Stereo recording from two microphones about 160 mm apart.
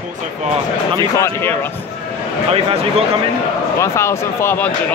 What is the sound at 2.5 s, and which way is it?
Speech, 40° right (ahead or behind).